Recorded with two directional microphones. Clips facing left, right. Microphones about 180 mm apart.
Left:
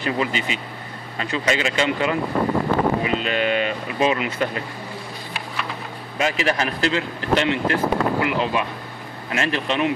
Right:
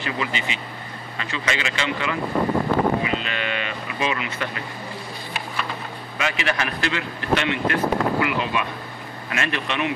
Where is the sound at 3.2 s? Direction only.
45° left (ahead or behind).